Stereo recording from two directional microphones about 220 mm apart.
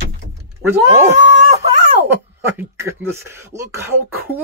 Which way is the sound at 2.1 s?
10° right (ahead or behind).